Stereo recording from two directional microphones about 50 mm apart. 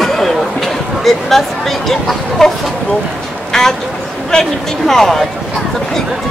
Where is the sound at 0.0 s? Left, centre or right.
Centre.